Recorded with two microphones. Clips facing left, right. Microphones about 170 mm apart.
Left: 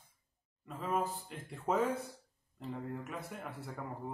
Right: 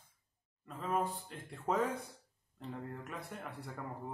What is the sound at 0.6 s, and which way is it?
Speech, centre (ahead or behind).